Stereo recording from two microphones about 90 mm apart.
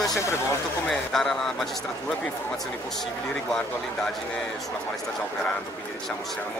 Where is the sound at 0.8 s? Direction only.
5° left (ahead or behind).